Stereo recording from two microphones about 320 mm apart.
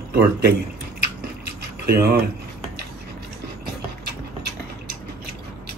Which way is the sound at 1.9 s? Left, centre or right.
Right.